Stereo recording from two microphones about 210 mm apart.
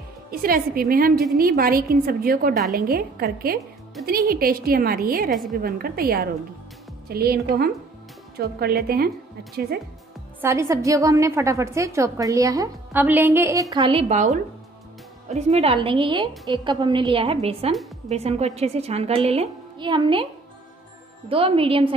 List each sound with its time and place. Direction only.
0.3 s a woman's voice: 45° right (ahead or behind)
10.4 s a woman's voice: 15° right (ahead or behind)
21.3 s a woman's voice: 25° right (ahead or behind)